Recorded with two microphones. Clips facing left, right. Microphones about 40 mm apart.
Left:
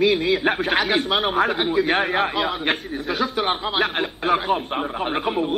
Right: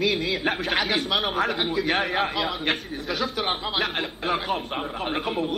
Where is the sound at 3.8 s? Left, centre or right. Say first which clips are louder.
Left 4 dB; left.